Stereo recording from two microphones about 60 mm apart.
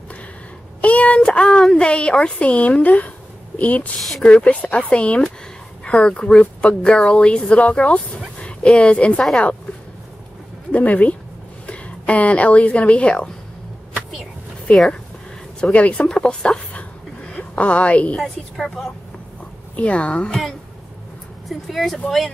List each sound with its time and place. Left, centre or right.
0.7 s a woman's voice: left
10.7 s speech: left
14.7 s speech: left
16.1 s a woman's voice: centre
18.1 s a woman's voice: centre
19.7 s speech: left
21.5 s a woman's voice: centre